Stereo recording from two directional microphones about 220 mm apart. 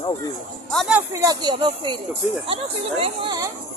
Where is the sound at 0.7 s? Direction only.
Centre (ahead or behind); by 3.5 s 20° right (ahead or behind).